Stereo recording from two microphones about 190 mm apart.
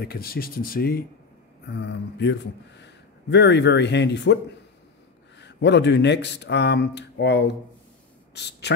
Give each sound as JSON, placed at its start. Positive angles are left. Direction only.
{"t": 0.0, "sound": "speech", "side_deg": 55}
{"t": 1.7, "sound": "speech", "side_deg": 65}
{"t": 5.4, "sound": "speech", "side_deg": 65}